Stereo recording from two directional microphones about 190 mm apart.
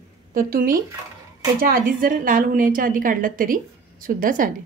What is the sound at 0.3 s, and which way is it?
A woman's voice, 50° right (ahead or behind).